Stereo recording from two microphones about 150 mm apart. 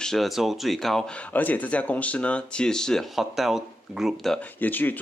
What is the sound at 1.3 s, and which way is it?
Speech, 10° left (ahead or behind).